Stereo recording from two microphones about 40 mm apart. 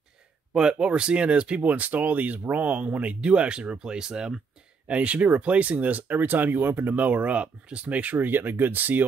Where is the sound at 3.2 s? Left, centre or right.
Right.